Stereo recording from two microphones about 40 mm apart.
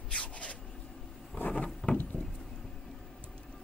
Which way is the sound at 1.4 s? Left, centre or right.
Left.